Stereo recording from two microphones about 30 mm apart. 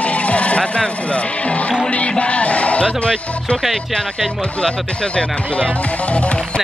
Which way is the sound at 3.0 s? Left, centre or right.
Left.